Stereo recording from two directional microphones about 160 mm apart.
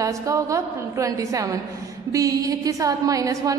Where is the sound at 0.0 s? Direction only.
20° right (ahead or behind).